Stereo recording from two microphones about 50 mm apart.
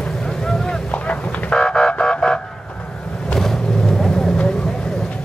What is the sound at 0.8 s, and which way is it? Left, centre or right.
Run, left.